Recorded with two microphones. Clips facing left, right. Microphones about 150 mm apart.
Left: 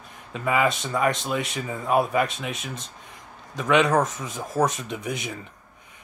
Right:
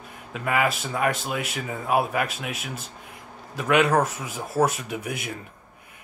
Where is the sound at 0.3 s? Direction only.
5° right (ahead or behind).